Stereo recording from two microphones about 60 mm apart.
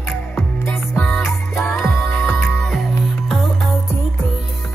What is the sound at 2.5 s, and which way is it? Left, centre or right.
Music, centre.